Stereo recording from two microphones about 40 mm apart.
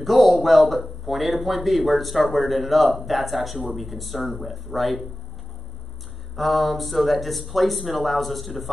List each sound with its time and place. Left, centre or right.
0.0 s a man's voice: centre
6.3 s a man's voice: centre